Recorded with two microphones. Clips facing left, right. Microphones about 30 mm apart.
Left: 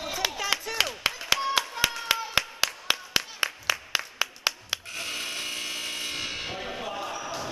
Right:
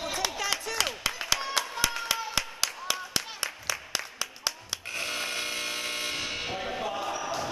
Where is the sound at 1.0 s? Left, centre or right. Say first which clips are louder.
Left 3 dB; left.